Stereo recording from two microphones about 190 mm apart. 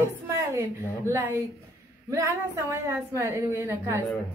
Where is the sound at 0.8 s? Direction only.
10° left (ahead or behind).